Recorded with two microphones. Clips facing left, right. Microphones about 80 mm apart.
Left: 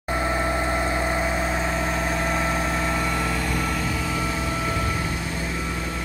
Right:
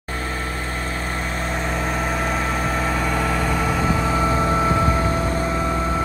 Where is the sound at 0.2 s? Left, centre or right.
Centre.